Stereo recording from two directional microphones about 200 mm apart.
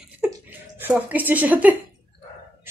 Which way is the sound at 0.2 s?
10° right (ahead or behind).